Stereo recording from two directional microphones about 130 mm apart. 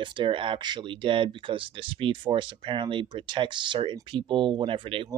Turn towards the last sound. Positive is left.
turn(degrees=-40)  # may be behind; listen again after turning